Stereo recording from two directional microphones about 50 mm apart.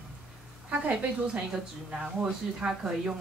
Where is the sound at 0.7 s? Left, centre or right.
Right.